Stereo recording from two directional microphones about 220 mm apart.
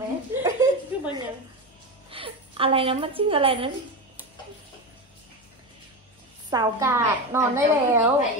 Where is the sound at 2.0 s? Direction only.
25° right (ahead or behind).